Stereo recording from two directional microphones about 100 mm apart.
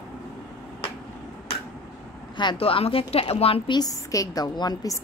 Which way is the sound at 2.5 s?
70° left (ahead or behind).